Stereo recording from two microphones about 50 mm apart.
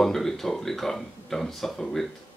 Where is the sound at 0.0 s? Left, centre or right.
Centre.